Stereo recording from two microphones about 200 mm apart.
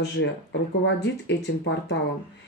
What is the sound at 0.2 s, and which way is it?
Speech, 65° left (ahead or behind).